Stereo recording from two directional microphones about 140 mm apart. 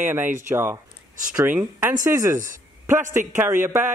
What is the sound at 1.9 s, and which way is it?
Speech, 25° right (ahead or behind).